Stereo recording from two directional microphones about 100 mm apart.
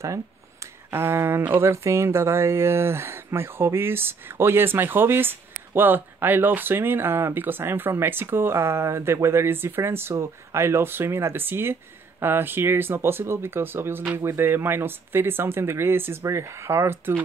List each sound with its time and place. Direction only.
0.9 s speech: 25° right (ahead or behind)